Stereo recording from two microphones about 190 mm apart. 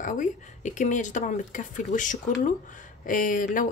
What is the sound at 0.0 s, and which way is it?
Speech, 40° left (ahead or behind).